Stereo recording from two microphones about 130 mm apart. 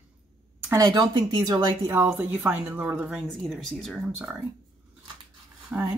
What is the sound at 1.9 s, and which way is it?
A woman's voice, 15° right (ahead or behind).